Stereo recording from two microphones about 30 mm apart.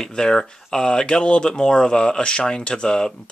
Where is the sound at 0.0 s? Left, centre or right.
Left.